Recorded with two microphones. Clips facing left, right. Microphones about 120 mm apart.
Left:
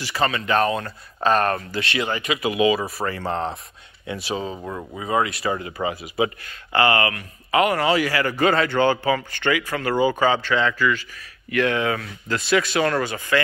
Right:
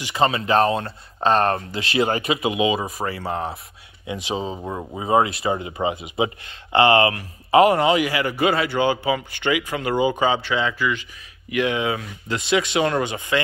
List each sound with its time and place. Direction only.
0.0 s speech: 25° right (ahead or behind)